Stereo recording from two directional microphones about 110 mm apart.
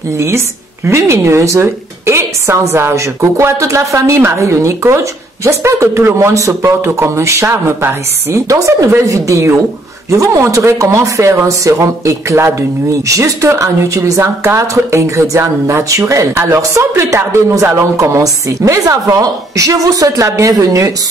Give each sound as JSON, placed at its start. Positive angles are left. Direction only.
{"t": 0.8, "sound": "a woman's voice", "side_deg": -25}